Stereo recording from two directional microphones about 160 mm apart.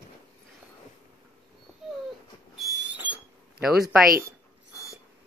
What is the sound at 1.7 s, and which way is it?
Dog, centre (ahead or behind).